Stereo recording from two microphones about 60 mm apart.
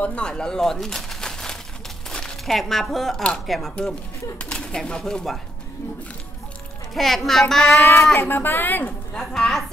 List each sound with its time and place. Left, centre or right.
0.0 s a child's voice: centre
4.5 s speech: centre
6.9 s a child's voice: centre
7.7 s a woman's voice: left
9.1 s speech: centre